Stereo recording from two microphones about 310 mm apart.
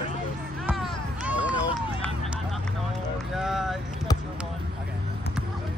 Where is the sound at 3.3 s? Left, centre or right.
Centre.